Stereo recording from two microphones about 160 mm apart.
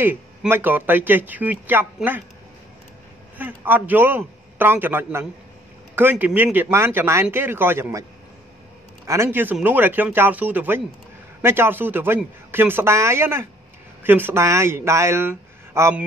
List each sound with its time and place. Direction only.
0.0 s speech: 10° right (ahead or behind)
3.3 s speech: 10° right (ahead or behind)
9.0 s speech: 20° right (ahead or behind)